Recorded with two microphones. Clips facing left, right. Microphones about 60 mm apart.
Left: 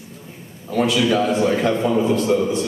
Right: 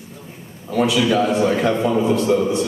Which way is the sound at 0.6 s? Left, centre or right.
Centre.